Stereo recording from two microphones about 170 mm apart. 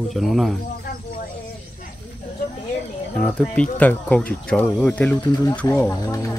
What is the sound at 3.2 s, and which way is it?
Speech, 10° left (ahead or behind).